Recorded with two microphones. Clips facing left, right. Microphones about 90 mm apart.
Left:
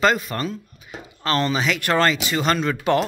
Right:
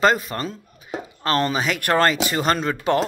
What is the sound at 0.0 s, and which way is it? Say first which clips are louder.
Speech: right 1 dB; 35° right (ahead or behind).